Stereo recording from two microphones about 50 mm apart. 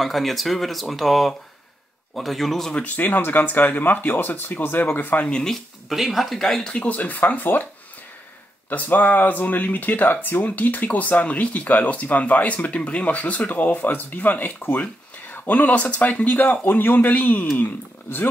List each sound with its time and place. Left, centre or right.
0.0 s speech: centre
2.7 s speech: left
5.3 s speech: centre
6.4 s speech: centre
7.0 s speech: left
8.6 s speech: left